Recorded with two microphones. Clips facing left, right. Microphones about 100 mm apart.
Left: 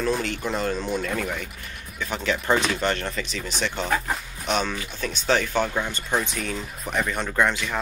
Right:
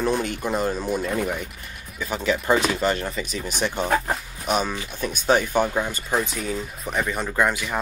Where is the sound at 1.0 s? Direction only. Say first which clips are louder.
Right 3 dB; 20° right (ahead or behind).